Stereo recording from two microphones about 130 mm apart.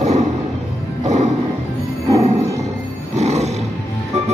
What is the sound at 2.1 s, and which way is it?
Music, 55° right (ahead or behind).